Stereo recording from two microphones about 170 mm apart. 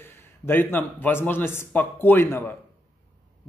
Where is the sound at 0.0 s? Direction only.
10° left (ahead or behind).